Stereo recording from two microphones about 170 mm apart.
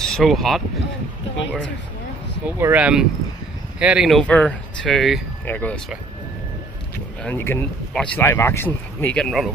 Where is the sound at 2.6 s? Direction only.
10° right (ahead or behind); by 5.8 s 10° left (ahead or behind).